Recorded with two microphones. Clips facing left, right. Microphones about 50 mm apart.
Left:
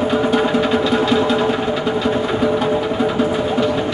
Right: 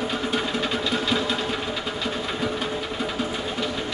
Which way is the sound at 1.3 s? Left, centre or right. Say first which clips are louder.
Left 10 dB; left.